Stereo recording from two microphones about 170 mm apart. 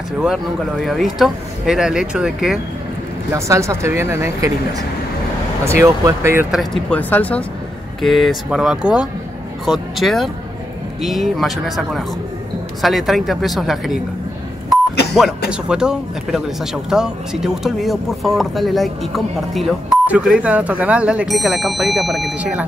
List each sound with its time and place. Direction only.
0.2 s speech: centre (ahead or behind)
3.3 s speech: 15° right (ahead or behind)
6.5 s speech: centre (ahead or behind)
15.5 s speech: 5° right (ahead or behind)